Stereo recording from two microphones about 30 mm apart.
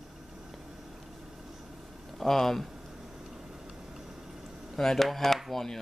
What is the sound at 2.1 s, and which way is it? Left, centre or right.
Speech, centre.